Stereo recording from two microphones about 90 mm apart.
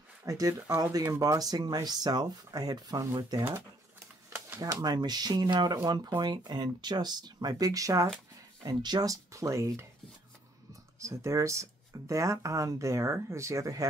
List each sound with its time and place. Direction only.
0.2 s speech: 40° right (ahead or behind)
3.3 s speech: 25° right (ahead or behind)
4.6 s speech: 45° right (ahead or behind)
8.6 s speech: 50° right (ahead or behind); by 9.8 s 35° right (ahead or behind)
11.0 s speech: 35° right (ahead or behind)